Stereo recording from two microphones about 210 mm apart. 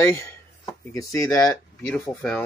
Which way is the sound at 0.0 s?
10° left (ahead or behind).